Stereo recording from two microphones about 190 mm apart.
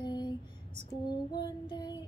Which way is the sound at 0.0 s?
20° left (ahead or behind).